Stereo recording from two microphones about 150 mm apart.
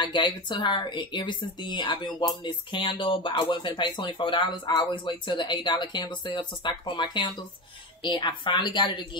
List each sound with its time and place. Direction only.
0.0 s speech: 30° left (ahead or behind)